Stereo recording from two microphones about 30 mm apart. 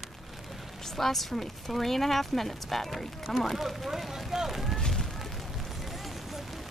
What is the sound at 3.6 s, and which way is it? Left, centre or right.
Speech, centre.